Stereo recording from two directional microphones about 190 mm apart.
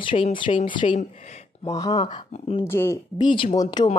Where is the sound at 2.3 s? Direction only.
30° left (ahead or behind).